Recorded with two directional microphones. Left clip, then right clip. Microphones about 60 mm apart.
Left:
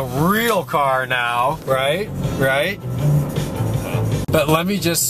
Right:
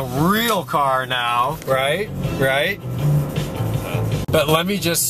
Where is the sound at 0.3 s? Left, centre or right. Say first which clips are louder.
Left 1 dB; centre.